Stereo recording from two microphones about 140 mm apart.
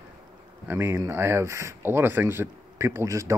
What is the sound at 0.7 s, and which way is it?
Speech, 15° right (ahead or behind).